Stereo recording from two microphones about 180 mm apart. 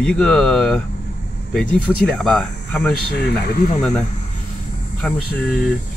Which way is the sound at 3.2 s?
65° left (ahead or behind).